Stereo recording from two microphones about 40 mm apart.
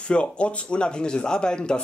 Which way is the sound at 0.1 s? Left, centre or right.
Left.